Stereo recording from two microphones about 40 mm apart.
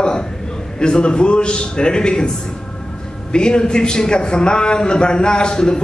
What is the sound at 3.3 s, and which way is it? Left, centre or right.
A man's voice, left.